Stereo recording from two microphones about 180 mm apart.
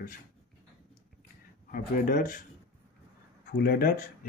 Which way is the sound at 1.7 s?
50° left (ahead or behind).